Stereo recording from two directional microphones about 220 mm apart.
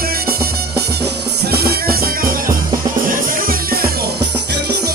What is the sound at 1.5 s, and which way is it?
Music, 45° right (ahead or behind).